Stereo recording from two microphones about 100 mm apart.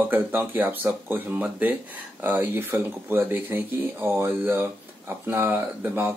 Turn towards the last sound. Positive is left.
turn(degrees=-20)  # may be behind; listen again after turning